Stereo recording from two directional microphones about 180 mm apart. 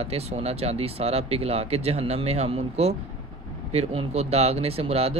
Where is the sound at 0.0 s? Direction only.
35° right (ahead or behind).